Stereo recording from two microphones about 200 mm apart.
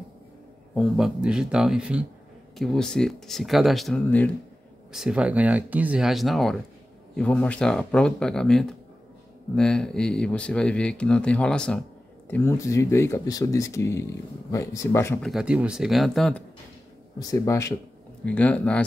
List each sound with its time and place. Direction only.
0.7 s speech: centre (ahead or behind)
15.2 s speech: 5° right (ahead or behind)
17.2 s speech: 15° left (ahead or behind)